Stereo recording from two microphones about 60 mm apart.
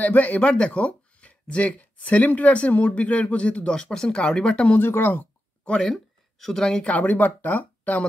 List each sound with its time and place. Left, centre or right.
0.0 s speech: left
4.7 s speech: left
5.7 s speech: centre
6.9 s speech: left